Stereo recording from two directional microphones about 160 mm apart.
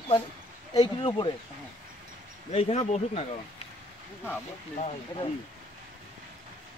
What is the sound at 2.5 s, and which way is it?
Speech, 35° left (ahead or behind).